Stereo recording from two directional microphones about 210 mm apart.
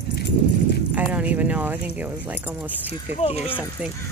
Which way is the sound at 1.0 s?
5° right (ahead or behind).